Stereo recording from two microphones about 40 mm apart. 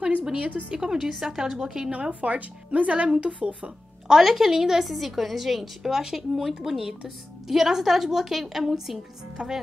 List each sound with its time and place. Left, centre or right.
0.4 s speech: right
0.8 s a woman's voice: centre
1.9 s speech: right
4.1 s a woman's voice: centre
9.4 s speech: right